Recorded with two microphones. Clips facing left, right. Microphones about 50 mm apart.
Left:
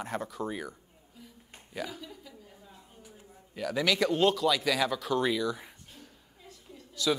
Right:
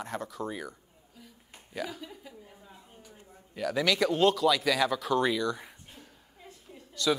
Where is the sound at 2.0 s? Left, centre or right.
Centre.